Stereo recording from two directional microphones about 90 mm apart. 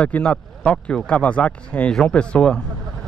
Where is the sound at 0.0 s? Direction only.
10° left (ahead or behind).